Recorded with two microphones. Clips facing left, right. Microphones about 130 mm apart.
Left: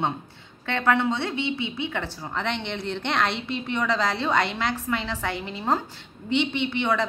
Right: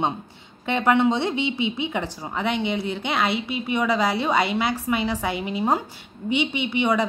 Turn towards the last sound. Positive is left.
turn(degrees=-15)  # may be behind; listen again after turning